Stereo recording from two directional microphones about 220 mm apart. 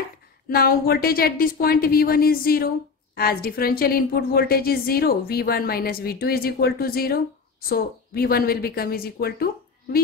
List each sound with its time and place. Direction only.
0.5 s a woman's voice: 45° left (ahead or behind)